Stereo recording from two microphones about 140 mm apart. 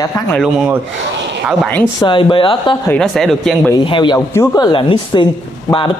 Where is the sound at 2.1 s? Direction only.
35° left (ahead or behind).